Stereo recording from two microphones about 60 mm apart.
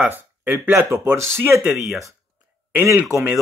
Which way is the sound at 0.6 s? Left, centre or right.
Right.